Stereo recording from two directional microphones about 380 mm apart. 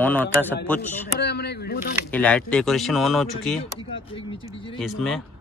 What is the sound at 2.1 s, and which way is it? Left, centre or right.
Speech, centre.